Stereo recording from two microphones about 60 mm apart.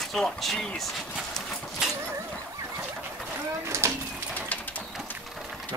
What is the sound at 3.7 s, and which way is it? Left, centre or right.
Speech, right.